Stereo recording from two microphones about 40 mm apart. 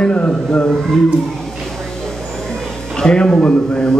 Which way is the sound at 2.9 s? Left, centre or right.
Left.